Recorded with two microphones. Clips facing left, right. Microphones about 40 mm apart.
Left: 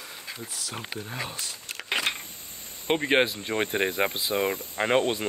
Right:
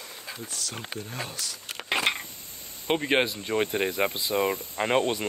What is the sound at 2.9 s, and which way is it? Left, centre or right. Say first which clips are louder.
Speech: left 1 dB; centre.